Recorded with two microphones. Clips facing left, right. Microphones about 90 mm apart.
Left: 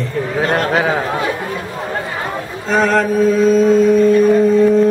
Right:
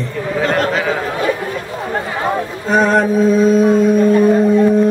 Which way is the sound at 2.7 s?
20° right (ahead or behind).